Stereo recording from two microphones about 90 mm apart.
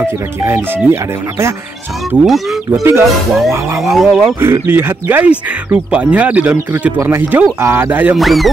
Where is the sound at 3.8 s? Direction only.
Centre (ahead or behind).